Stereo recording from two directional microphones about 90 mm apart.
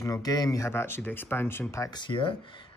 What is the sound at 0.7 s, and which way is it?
Speech, 25° left (ahead or behind).